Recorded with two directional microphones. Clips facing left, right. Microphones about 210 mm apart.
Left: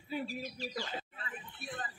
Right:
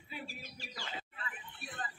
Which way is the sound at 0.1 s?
40° left (ahead or behind).